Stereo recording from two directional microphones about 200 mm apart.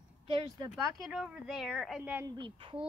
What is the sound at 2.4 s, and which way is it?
Speech, 25° right (ahead or behind).